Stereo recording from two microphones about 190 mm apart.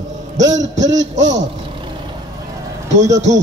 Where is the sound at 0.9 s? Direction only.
75° right (ahead or behind).